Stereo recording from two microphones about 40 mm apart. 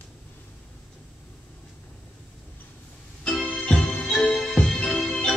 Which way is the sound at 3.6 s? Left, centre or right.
Left.